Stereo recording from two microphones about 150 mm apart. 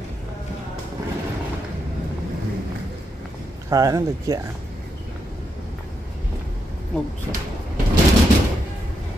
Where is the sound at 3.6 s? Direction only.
25° right (ahead or behind).